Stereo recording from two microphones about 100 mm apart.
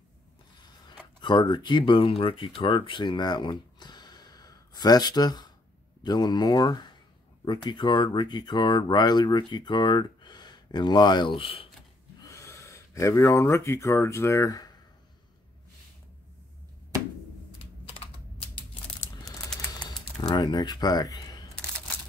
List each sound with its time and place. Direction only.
1.2 s speech: 50° left (ahead or behind)
12.2 s speech: 30° left (ahead or behind)
20.2 s speech: 45° left (ahead or behind)